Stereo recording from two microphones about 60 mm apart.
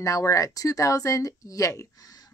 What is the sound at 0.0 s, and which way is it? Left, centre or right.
Speech, left.